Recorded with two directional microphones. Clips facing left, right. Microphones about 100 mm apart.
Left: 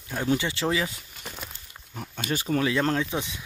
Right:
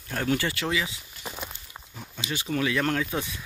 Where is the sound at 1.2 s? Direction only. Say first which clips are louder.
Right 3 dB; 5° right (ahead or behind).